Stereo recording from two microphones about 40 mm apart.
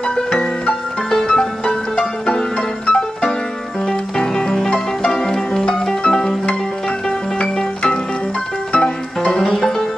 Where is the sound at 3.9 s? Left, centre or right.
Centre; by 9.3 s left.